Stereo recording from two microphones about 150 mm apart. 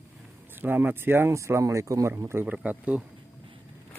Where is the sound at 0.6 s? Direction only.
15° right (ahead or behind).